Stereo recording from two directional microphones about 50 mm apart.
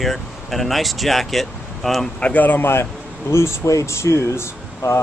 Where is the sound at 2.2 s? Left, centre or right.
Left.